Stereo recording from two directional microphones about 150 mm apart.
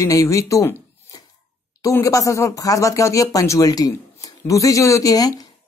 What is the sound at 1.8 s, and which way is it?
Speech, 20° left (ahead or behind).